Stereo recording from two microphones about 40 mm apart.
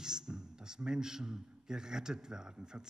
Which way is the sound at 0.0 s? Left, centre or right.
Centre.